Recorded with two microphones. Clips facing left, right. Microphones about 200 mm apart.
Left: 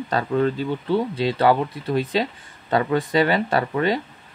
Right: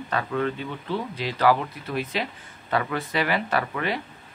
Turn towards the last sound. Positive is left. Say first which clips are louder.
# left 5 dB
turn(degrees=30)  # may be behind; listen again after turning